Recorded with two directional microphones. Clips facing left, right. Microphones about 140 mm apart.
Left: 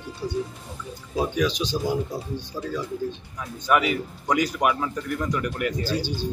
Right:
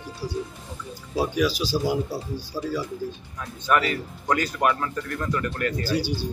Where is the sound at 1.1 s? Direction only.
5° right (ahead or behind).